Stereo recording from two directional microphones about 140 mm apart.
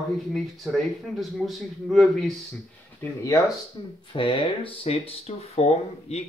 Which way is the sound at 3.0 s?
20° left (ahead or behind).